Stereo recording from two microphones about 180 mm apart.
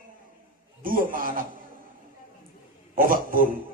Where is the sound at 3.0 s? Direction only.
50° right (ahead or behind).